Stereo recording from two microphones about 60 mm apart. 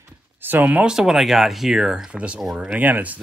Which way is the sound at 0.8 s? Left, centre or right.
Centre.